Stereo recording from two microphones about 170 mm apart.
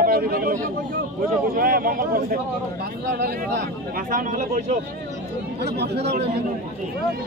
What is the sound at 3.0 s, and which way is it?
Speech, 75° right (ahead or behind).